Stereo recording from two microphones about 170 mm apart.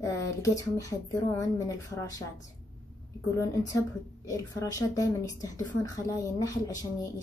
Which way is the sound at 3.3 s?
20° left (ahead or behind).